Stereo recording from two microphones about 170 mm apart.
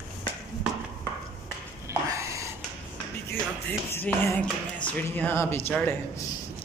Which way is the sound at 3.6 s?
10° left (ahead or behind).